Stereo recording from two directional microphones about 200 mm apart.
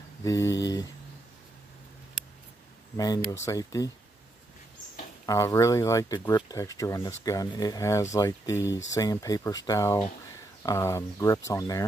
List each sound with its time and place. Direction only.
0.2 s speech: 15° left (ahead or behind)
3.0 s speech: 20° left (ahead or behind)
5.2 s speech: 15° left (ahead or behind)